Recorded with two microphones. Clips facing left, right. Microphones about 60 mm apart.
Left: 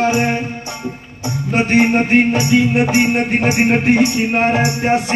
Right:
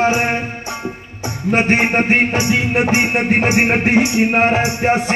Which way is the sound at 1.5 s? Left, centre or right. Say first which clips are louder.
Left 1 dB; right.